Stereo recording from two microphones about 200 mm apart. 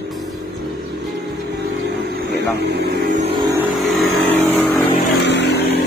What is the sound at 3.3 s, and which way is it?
Vehicle, 20° right (ahead or behind).